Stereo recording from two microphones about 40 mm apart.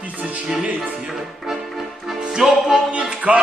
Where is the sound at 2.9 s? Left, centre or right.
Right.